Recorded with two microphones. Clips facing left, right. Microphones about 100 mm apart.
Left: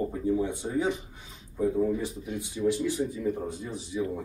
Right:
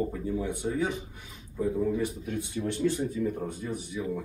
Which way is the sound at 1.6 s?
20° left (ahead or behind).